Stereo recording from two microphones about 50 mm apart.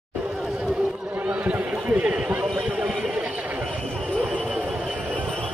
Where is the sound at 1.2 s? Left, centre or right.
Right.